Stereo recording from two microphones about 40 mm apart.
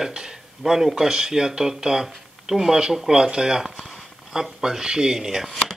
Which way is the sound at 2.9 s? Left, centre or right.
Centre.